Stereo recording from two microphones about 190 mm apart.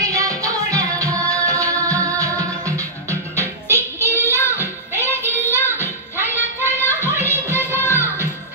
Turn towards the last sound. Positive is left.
turn(degrees=-15)  # may be behind; listen again after turning